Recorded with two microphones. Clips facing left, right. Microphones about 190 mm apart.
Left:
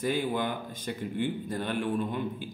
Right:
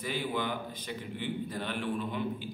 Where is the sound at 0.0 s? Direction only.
50° left (ahead or behind).